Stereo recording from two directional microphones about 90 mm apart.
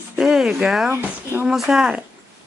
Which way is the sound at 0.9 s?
25° right (ahead or behind).